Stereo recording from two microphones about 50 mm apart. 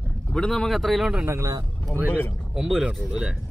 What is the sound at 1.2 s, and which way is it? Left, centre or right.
Speech, right.